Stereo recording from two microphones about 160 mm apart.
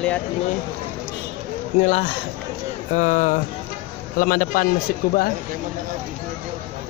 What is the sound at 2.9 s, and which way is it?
A man's voice, 50° left (ahead or behind).